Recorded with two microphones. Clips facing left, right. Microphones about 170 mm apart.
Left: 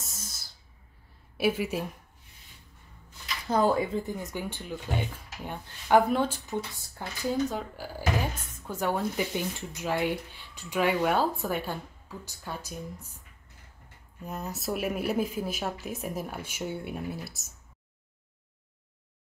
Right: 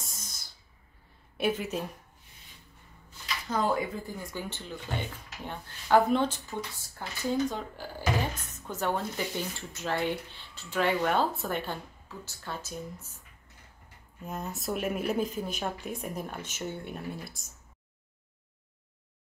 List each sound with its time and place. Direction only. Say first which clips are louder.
0.0 s music: left 2 dB; 5° left (ahead or behind)
1.4 s speech: left 2 dB; 10° left (ahead or behind)
3.4 s speech: left 4 dB; 35° left (ahead or behind)
4.0 s speech: left 3 dB; 20° left (ahead or behind)
14.2 s speech: left 1 dB; centre (ahead or behind)